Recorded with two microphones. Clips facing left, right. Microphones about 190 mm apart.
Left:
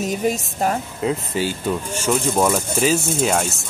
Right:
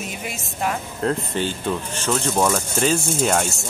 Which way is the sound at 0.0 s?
40° left (ahead or behind).